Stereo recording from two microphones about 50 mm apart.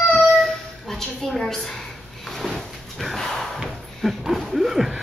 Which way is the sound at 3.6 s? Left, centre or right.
Centre.